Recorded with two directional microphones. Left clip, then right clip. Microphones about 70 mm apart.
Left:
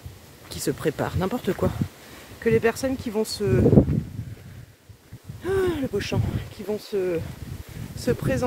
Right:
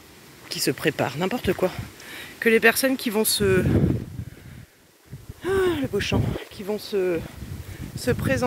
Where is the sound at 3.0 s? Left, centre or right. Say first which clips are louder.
Right 3 dB; right.